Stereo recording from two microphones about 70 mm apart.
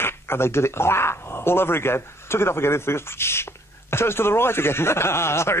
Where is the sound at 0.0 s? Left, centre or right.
Left.